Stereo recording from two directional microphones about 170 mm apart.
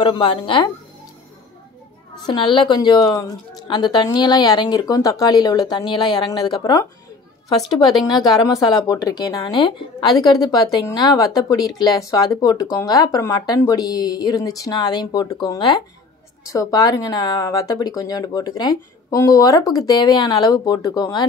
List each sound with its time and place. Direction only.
0.0 s speech: 25° left (ahead or behind)
2.2 s speech: 30° left (ahead or behind)
8.5 s speech: 25° left (ahead or behind)